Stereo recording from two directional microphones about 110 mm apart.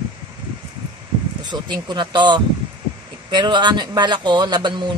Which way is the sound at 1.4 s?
45° right (ahead or behind).